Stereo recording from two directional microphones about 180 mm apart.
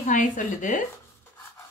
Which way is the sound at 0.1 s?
45° left (ahead or behind).